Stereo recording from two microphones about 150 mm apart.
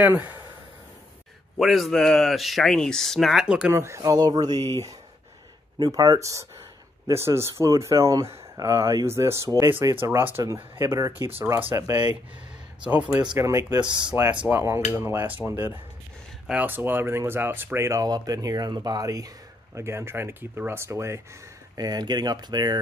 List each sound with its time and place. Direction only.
0.0 s speech: 10° right (ahead or behind)
1.6 s speech: centre (ahead or behind)
3.7 s speech: 20° right (ahead or behind)
4.6 s speech: 20° left (ahead or behind)
5.8 s speech: 25° right (ahead or behind)
13.4 s speech: 20° right (ahead or behind)
14.5 s speech: 15° right (ahead or behind)